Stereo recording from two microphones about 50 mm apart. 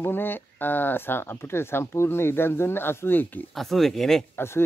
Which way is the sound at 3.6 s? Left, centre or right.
Centre.